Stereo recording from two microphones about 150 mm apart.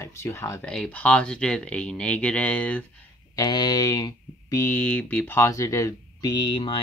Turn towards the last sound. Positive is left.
turn(degrees=35)  # may be behind; listen again after turning